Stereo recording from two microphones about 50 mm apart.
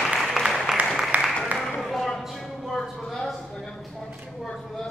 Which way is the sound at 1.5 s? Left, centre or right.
Right.